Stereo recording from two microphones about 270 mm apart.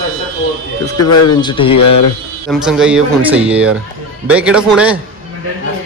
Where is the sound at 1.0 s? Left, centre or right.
Left.